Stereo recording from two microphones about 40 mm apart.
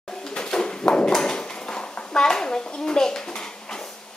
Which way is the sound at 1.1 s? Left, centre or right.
Centre.